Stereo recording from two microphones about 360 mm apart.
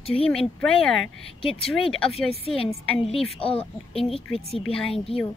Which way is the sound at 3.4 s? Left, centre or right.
Centre.